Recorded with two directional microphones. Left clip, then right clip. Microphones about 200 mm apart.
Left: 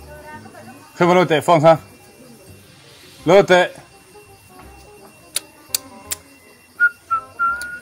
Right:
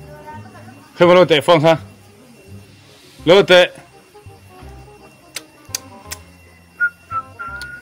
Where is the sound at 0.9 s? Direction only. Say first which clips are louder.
Right 4 dB; 5° right (ahead or behind).